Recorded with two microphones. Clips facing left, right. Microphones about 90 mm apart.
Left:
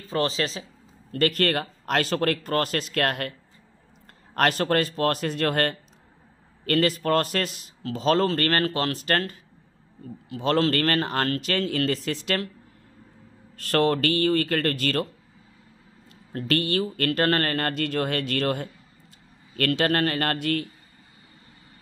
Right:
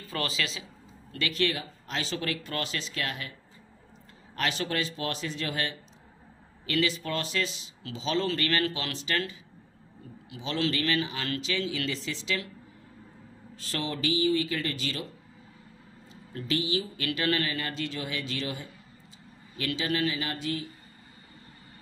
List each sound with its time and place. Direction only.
0.1 s speech: 35° left (ahead or behind)
1.1 s speech: 50° left (ahead or behind)
4.4 s a man's voice: 50° left (ahead or behind)
13.6 s speech: 60° left (ahead or behind)
16.1 s speech: 60° left (ahead or behind)